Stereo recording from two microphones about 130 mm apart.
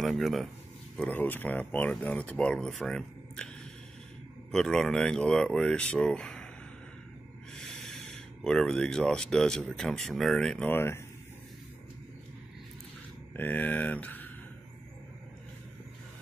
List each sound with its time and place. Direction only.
0.0 s speech: centre (ahead or behind)
0.9 s speech: 15° left (ahead or behind)
4.5 s speech: 5° left (ahead or behind)
7.5 s speech: 5° left (ahead or behind)
10.7 s speech: 20° left (ahead or behind)
13.4 s speech: 10° left (ahead or behind)